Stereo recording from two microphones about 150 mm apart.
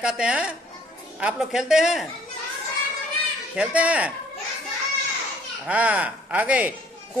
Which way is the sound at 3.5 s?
10° right (ahead or behind).